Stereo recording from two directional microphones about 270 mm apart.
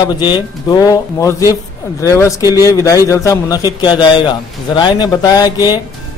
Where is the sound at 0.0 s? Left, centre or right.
Centre.